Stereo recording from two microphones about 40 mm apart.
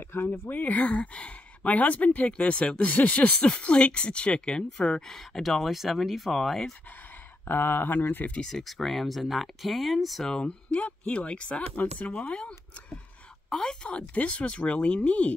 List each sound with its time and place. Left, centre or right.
0.0 s speech: left; by 6.7 s centre
7.4 s speech: left
8.4 s speech: centre
8.6 s speech: centre
10.2 s speech: left
11.7 s speech: left
12.3 s a woman's voice: left
13.8 s speech: left